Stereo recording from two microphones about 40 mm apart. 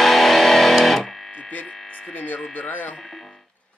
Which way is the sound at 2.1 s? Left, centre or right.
Left.